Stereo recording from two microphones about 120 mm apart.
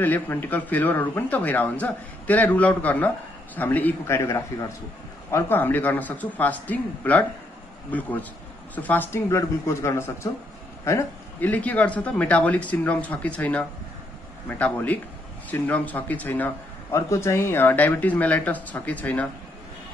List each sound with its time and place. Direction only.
0.0 s a man's voice: 15° left (ahead or behind)